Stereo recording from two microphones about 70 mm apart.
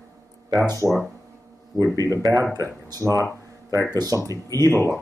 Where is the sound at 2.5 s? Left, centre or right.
Right.